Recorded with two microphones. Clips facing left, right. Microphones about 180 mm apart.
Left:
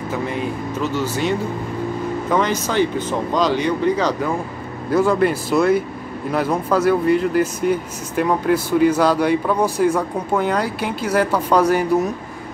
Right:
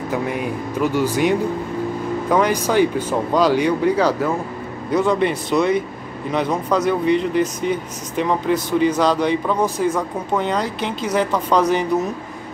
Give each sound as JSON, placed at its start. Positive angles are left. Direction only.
{"t": 0.7, "sound": "speech", "side_deg": -10}
{"t": 4.9, "sound": "speech", "side_deg": 5}